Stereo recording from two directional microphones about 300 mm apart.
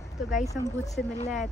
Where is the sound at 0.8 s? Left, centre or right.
Left.